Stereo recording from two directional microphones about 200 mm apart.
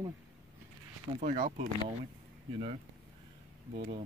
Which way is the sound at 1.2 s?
40° right (ahead or behind).